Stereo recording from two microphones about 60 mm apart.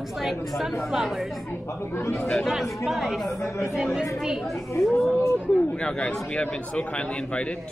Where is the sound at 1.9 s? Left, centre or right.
Left.